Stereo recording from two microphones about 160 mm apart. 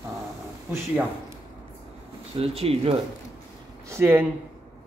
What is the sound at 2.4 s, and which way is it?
Speech, 40° right (ahead or behind).